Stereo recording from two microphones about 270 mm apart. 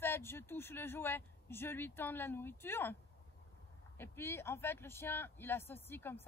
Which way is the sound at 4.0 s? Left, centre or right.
Centre.